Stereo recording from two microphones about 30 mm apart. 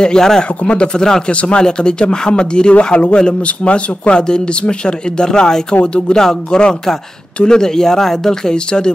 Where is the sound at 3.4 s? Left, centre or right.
Left.